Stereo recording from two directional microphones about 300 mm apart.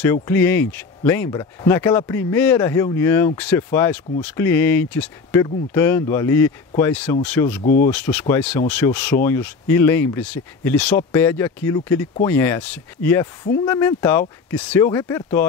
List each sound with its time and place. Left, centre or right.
0.0 s speech: centre